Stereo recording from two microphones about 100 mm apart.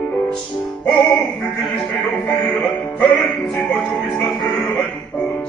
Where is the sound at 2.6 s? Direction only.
15° left (ahead or behind).